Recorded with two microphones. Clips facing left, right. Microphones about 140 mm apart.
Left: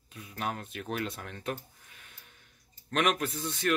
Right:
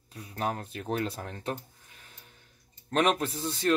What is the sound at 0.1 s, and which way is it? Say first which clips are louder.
Speech: right 3 dB; 35° right (ahead or behind).